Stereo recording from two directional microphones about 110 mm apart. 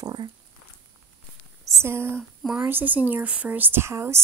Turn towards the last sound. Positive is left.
turn(degrees=-25)  # may be behind; listen again after turning